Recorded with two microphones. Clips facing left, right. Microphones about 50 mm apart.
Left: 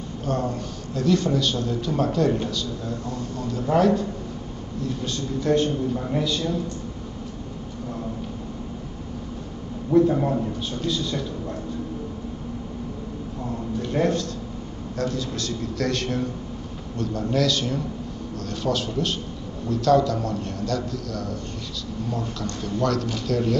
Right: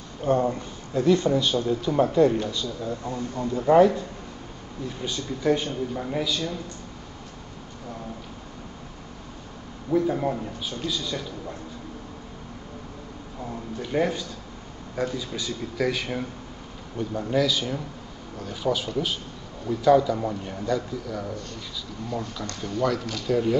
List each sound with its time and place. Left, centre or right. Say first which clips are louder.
0.2 s a man's voice: right 4 dB; right
5.0 s a man's voice: right 2 dB; centre
9.9 s a man's voice: left 5 dB; centre
13.9 s a man's voice: left 2 dB; centre